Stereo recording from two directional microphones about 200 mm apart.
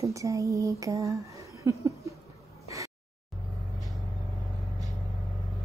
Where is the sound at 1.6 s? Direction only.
15° right (ahead or behind).